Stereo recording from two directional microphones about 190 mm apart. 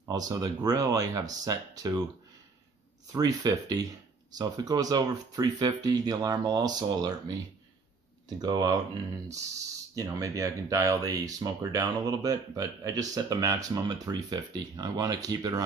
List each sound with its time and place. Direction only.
0.0 s speech: 20° right (ahead or behind)
3.1 s speech: 20° right (ahead or behind)
9.9 s speech: 20° right (ahead or behind)